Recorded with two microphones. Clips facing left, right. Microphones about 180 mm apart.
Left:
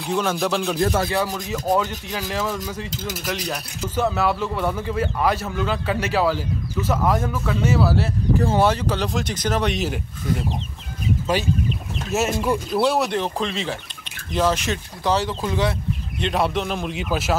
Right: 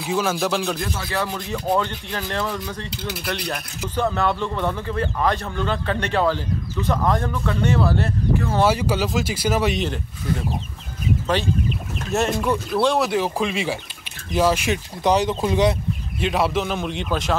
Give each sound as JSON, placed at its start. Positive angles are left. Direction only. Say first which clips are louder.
{"t": 0.0, "sound": "a man's voice", "louder": "even", "side_deg": -5}
{"t": 1.1, "sound": "speech", "louder": "left 2 dB", "side_deg": 10}
{"t": 2.9, "sound": "speech", "louder": "even", "side_deg": 45}
{"t": 3.9, "sound": "a man's voice", "louder": "even", "side_deg": 5}
{"t": 8.6, "sound": "a man's voice", "louder": "right 1 dB", "side_deg": -10}
{"t": 12.1, "sound": "a man's voice", "louder": "even", "side_deg": 5}
{"t": 16.2, "sound": "a man's voice", "louder": "right 1 dB", "side_deg": 0}